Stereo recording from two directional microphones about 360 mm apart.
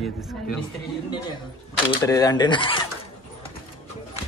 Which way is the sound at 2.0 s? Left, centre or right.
Centre.